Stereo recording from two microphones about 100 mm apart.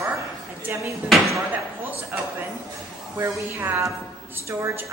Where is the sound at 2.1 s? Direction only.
20° right (ahead or behind).